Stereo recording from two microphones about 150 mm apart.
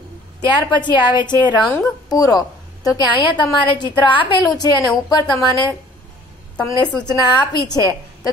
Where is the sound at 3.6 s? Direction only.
30° left (ahead or behind).